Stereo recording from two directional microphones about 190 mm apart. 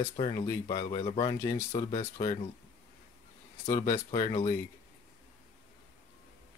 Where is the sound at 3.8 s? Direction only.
35° left (ahead or behind).